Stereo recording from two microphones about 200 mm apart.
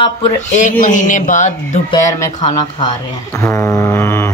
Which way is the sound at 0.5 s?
40° left (ahead or behind).